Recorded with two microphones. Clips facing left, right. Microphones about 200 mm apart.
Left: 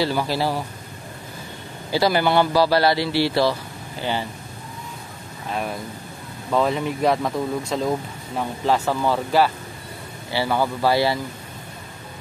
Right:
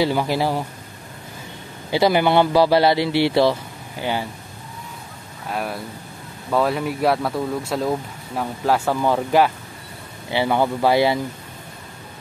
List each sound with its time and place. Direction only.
0.0 s a man's voice: 20° right (ahead or behind)
1.9 s a man's voice: 20° right (ahead or behind)
5.5 s speech: 5° right (ahead or behind)